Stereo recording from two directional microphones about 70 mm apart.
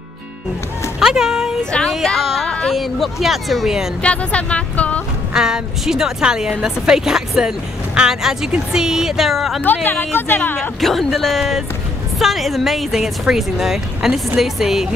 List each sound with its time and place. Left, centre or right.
0.9 s a sound: centre
1.6 s speech: centre
1.9 s a sound: centre
2.7 s speech: centre
4.0 s speech: centre
5.3 s a woman's voice: centre
9.8 s speech: left
10.8 s a woman's voice: centre